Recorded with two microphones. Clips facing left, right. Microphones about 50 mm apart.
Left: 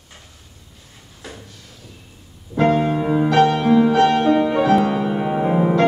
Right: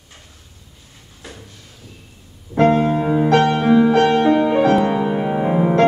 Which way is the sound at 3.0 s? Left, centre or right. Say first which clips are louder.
Even; centre.